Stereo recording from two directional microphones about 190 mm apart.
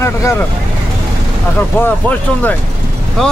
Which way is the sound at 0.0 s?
15° left (ahead or behind).